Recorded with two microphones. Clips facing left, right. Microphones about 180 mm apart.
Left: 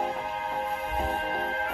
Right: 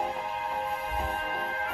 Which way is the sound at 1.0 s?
30° left (ahead or behind).